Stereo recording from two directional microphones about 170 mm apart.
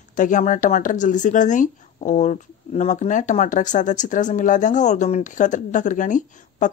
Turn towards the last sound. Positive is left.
turn(degrees=50)  # may be behind; listen again after turning